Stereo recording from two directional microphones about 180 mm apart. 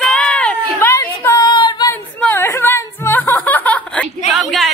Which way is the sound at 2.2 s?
10° left (ahead or behind).